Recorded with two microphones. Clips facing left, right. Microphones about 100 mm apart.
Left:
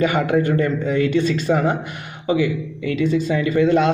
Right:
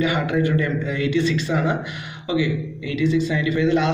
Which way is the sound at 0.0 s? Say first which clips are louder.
Left 3 dB; 50° left (ahead or behind).